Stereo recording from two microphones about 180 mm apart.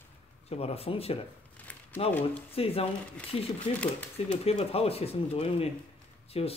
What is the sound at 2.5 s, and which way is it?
Speech, 35° left (ahead or behind).